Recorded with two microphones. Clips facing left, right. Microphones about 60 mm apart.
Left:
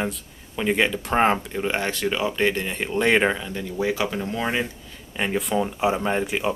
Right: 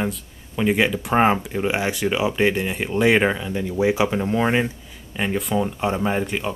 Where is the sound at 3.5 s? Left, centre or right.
Centre.